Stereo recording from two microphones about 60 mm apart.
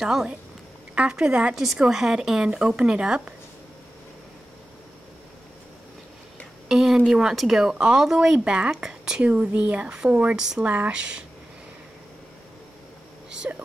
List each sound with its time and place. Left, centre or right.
0.0 s speech: centre
6.7 s a sound: centre
7.1 s speech: centre
9.2 s speech: right
13.5 s speech: right